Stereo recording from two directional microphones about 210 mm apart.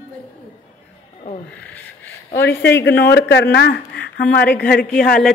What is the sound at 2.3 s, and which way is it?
Speech, 50° left (ahead or behind).